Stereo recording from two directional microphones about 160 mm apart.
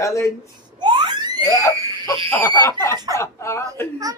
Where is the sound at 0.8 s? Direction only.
25° right (ahead or behind).